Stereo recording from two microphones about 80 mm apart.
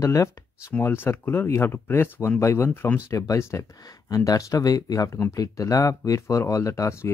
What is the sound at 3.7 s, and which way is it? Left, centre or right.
Speech, left.